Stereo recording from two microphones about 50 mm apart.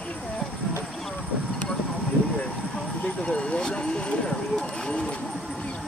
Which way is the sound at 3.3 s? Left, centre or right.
Centre.